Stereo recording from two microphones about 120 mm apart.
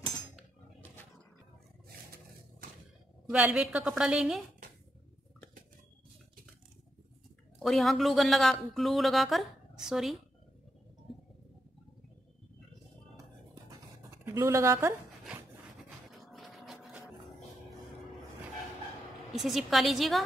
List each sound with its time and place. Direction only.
3.3 s a woman's voice: 10° right (ahead or behind)
7.5 s speech: centre (ahead or behind)
14.2 s speech: 25° right (ahead or behind)
16.1 s a sound: centre (ahead or behind)
19.3 s speech: centre (ahead or behind)